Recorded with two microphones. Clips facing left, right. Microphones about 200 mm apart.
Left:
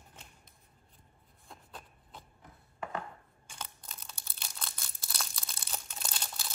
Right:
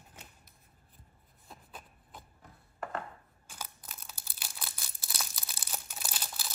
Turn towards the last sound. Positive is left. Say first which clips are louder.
# even
turn(degrees=-5)  # may be behind; listen again after turning